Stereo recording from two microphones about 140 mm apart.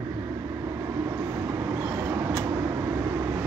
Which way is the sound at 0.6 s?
20° right (ahead or behind).